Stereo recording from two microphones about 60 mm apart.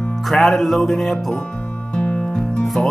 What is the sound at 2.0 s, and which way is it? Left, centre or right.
Music, centre.